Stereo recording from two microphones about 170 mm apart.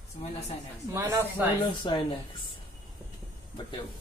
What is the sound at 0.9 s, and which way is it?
Speech, 15° right (ahead or behind).